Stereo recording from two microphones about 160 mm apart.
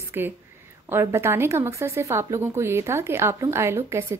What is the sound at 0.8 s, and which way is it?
A woman's voice, 15° right (ahead or behind).